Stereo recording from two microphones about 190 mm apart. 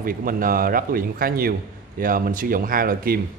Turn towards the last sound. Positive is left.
turn(degrees=-50)  # may be behind; listen again after turning